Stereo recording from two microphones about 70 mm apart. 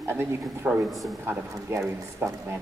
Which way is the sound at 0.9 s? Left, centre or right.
Centre.